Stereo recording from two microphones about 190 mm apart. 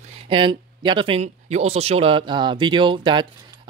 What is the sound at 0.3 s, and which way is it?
Speech, 25° right (ahead or behind).